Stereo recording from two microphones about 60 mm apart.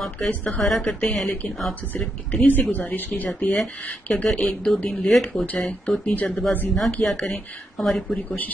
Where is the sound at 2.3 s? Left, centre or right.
Left.